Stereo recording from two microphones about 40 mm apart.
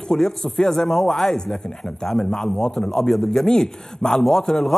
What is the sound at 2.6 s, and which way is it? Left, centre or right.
Speech, centre.